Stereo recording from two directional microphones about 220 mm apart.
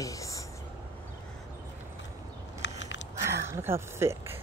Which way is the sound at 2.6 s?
55° left (ahead or behind).